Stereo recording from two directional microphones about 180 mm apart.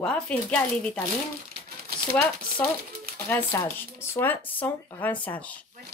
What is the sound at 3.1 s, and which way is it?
Speech, 15° left (ahead or behind).